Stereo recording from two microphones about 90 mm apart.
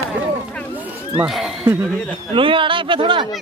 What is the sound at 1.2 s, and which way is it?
Speech, 5° right (ahead or behind).